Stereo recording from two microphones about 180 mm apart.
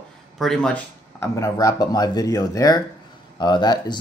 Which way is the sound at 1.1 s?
15° left (ahead or behind).